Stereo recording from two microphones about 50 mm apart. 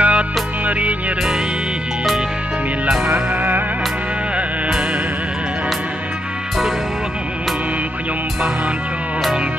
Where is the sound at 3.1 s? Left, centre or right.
Right.